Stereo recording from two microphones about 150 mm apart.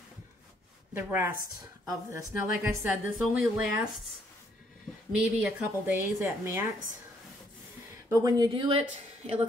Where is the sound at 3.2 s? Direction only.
Centre (ahead or behind).